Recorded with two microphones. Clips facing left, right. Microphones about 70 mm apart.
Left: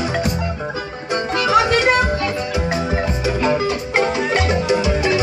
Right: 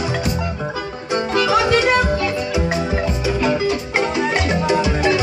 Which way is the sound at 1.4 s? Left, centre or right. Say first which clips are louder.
Left 2 dB; left.